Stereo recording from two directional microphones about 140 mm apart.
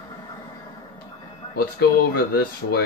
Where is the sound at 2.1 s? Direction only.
90° left.